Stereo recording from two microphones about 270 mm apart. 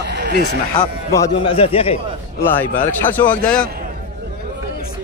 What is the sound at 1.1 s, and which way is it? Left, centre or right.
Speech, centre.